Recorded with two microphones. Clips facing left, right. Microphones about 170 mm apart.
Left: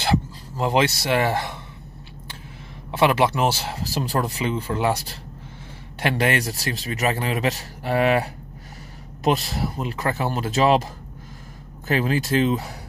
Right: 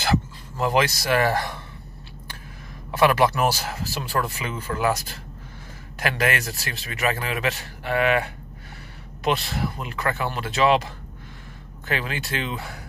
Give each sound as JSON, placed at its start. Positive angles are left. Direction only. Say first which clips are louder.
{"t": 0.0, "sound": "speech", "louder": "left 1 dB", "side_deg": 25}
{"t": 3.0, "sound": "a man's voice", "louder": "even", "side_deg": 25}
{"t": 11.9, "sound": "a man's voice", "louder": "left 7 dB", "side_deg": 40}